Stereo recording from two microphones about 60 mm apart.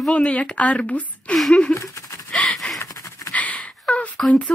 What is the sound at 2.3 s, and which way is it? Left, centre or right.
Gasp, centre.